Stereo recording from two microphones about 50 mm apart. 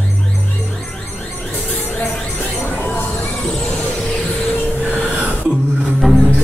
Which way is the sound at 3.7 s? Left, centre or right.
Left.